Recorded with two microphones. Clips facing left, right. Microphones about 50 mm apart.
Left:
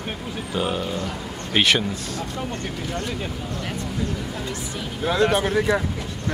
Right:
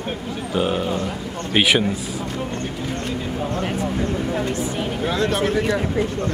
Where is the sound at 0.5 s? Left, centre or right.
Centre.